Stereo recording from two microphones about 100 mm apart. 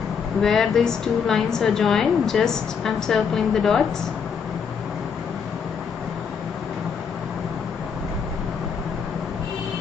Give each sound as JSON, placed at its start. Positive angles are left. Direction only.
{"t": 0.4, "sound": "a woman's voice", "side_deg": 5}